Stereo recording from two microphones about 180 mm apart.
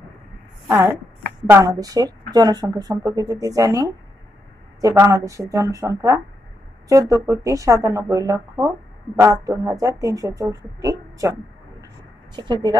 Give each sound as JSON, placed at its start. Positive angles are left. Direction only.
{"t": 0.7, "sound": "speech", "side_deg": -15}
{"t": 12.4, "sound": "speech", "side_deg": -25}